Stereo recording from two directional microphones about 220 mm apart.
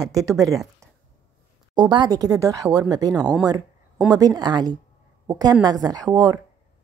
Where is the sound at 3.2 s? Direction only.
5° right (ahead or behind).